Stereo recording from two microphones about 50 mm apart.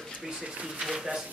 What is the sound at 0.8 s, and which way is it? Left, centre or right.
Speech, centre.